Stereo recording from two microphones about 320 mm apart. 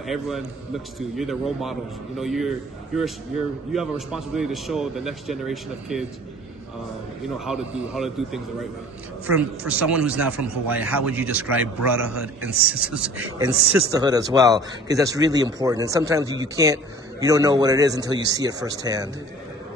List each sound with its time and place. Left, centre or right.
0.0 s a man's voice: centre
3.7 s a man's voice: centre
7.3 s a man's voice: centre
9.7 s a man's voice: centre